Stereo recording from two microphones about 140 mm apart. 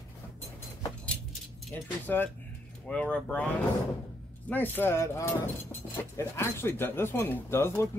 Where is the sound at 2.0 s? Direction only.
15° left (ahead or behind).